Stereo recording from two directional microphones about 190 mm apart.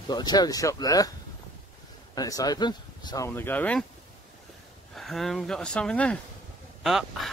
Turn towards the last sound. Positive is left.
turn(degrees=0)  # may be behind; listen again after turning